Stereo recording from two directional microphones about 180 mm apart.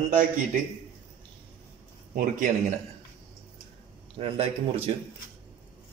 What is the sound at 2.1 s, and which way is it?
Speech, 45° right (ahead or behind).